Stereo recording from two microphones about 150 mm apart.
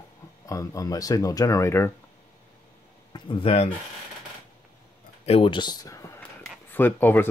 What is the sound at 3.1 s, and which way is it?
Speech, 35° left (ahead or behind).